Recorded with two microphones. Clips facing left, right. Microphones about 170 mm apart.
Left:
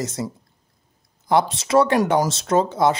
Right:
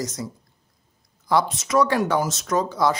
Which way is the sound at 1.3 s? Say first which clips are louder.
Left 3 dB; 25° left (ahead or behind).